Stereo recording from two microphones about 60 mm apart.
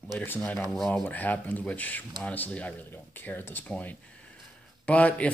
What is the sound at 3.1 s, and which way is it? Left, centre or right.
Speech, left.